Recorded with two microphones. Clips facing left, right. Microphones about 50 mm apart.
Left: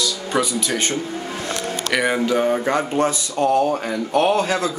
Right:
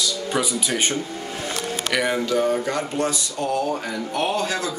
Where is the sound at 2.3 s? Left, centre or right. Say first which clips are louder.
Left 3 dB; left.